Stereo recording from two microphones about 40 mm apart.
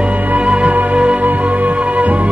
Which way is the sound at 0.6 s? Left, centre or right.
Right.